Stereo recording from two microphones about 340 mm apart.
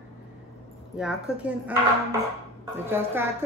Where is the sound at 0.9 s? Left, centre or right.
Centre.